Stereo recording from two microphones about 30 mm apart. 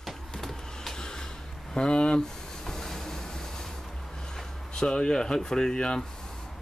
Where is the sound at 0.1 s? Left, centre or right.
Centre.